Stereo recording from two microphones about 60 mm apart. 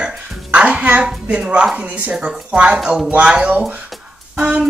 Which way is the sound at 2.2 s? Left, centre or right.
Centre.